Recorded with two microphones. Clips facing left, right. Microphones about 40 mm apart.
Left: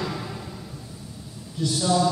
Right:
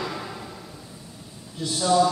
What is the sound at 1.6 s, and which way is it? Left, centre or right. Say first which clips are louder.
Speech: right 2 dB; centre.